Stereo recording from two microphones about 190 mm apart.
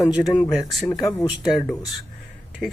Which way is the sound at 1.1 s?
20° left (ahead or behind).